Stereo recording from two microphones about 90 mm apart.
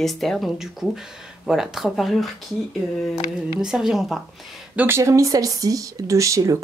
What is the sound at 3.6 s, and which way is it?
Speech, 5° right (ahead or behind).